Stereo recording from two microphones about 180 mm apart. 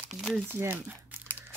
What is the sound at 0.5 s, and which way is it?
Speech, 10° right (ahead or behind).